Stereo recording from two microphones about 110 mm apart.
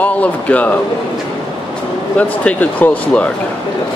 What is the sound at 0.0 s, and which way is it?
Speech, 15° left (ahead or behind).